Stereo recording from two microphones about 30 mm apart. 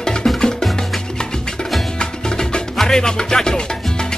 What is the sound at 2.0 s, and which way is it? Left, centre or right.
Music, left.